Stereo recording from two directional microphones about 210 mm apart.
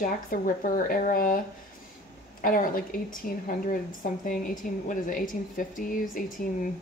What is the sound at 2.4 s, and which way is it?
A woman's voice, 40° left (ahead or behind).